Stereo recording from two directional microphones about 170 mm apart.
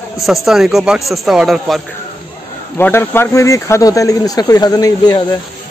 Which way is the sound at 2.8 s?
15° left (ahead or behind).